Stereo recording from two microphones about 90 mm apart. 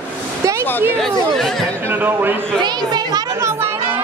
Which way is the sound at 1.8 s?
25° right (ahead or behind).